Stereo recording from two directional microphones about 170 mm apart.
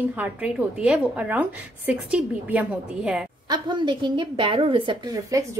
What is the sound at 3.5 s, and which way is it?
Speech, 25° right (ahead or behind).